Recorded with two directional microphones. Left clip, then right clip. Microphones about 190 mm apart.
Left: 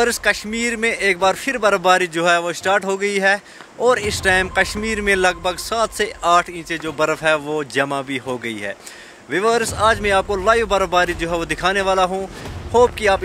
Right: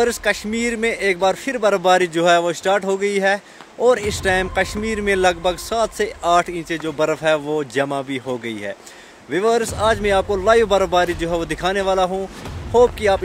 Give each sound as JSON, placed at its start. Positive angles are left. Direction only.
{"t": 0.0, "sound": "speech", "side_deg": -10}